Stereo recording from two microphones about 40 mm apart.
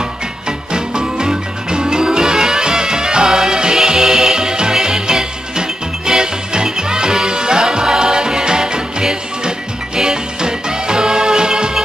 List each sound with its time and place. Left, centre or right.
0.5 s music: right